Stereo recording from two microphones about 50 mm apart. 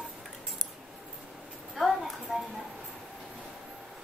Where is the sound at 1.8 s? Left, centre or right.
Centre.